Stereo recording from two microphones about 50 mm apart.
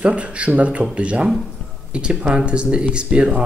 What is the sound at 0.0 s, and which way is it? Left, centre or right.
Speech, right.